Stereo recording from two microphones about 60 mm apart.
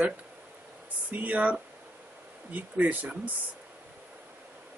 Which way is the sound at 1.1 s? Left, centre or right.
Right.